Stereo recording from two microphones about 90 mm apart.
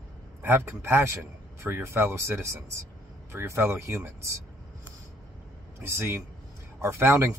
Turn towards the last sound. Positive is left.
turn(degrees=-25)  # may be behind; listen again after turning